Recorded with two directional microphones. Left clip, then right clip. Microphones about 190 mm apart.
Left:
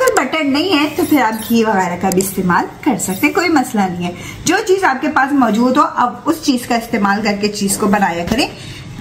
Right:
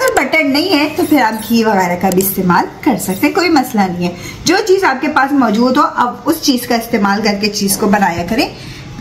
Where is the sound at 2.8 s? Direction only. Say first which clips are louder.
Right 2 dB; centre (ahead or behind).